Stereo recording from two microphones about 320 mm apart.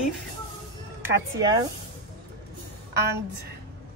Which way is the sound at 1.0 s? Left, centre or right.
Centre.